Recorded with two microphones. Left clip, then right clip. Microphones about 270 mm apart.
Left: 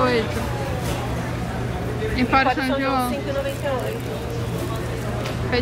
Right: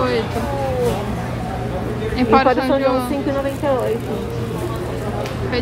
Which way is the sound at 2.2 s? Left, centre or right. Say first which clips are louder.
Right 5 dB; centre.